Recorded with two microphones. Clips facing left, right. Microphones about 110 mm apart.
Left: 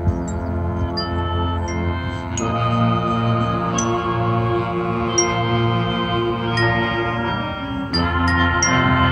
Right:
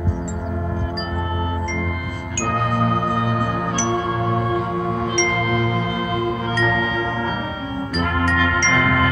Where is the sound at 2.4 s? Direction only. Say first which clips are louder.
Left 1 dB; 65° left (ahead or behind).